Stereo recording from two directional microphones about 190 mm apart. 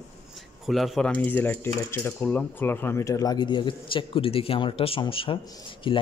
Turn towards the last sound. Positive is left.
turn(degrees=25)  # may be behind; listen again after turning